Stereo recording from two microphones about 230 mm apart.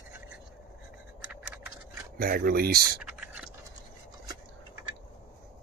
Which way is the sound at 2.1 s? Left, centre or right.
Right.